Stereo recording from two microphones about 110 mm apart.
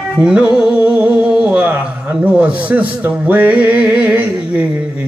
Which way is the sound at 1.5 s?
15° right (ahead or behind).